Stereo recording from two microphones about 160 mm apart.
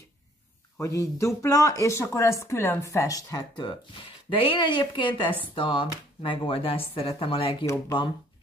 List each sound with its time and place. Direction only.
0.7 s speech: 20° left (ahead or behind); by 7.5 s 35° left (ahead or behind)
7.6 s speech: 20° left (ahead or behind)